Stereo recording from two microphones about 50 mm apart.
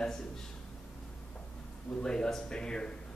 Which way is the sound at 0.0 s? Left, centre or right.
Centre.